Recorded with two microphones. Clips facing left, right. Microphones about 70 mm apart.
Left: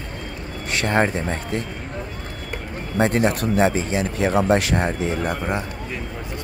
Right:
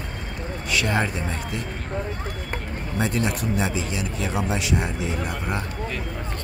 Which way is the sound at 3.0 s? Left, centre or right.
Left.